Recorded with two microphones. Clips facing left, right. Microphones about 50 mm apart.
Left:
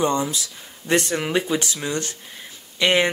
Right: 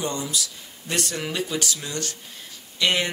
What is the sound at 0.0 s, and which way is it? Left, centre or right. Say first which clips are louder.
Speech: left 7 dB; left.